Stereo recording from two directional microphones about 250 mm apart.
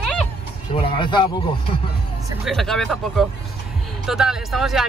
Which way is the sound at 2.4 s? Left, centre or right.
Centre.